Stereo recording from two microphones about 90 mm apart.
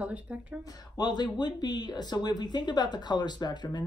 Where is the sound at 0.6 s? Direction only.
45° left (ahead or behind).